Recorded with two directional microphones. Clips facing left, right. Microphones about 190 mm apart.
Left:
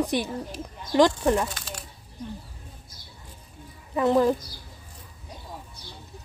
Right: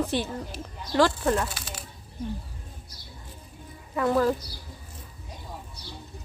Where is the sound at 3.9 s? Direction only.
20° left (ahead or behind).